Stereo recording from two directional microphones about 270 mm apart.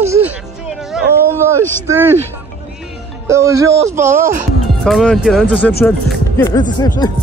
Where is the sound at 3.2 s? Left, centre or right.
Centre.